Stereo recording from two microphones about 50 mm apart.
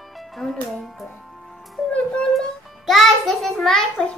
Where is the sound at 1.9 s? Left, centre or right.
Left.